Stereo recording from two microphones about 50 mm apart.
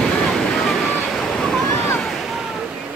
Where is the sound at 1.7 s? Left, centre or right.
Left.